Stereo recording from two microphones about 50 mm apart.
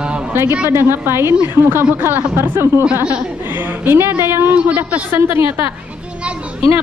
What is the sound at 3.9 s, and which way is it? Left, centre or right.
Speech, right.